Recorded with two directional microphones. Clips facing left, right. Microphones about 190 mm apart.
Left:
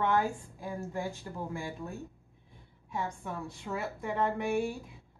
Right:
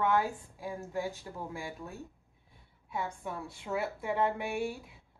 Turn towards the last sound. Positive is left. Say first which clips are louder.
# left 2 dB
turn(degrees=-5)  # may be behind; listen again after turning